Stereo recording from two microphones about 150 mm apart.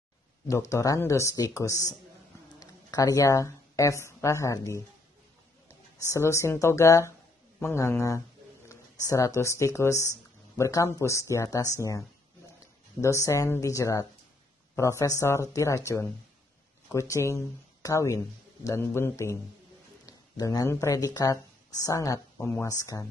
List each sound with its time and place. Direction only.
0.5 s a woman's voice: 20° left (ahead or behind)
5.9 s speech: 20° left (ahead or behind)
13.0 s speech: 20° left (ahead or behind)